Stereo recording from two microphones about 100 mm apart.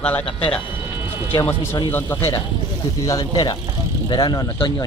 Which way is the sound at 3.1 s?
40° left (ahead or behind).